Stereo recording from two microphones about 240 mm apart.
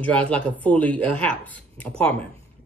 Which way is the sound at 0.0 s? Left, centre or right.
Centre.